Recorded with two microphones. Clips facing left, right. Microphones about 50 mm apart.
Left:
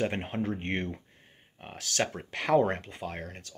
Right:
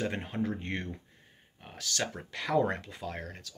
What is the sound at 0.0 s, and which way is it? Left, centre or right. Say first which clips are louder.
Speech: left 2 dB; left.